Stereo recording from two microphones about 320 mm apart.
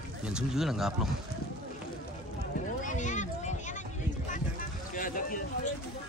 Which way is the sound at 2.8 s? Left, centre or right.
Left.